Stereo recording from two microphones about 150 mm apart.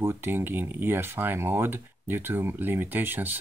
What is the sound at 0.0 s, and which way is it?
Speech, 15° right (ahead or behind).